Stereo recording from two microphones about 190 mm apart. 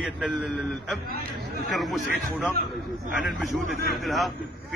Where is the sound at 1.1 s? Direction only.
55° right (ahead or behind).